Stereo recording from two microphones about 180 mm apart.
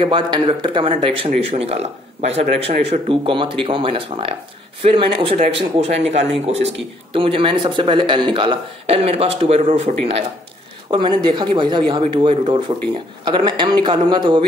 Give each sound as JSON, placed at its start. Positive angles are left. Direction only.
{"t": 0.0, "sound": "speech", "side_deg": -30}